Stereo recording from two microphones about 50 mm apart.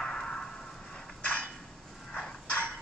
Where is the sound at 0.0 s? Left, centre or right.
Centre.